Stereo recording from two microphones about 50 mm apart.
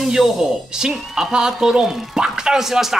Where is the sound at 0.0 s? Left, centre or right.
Centre.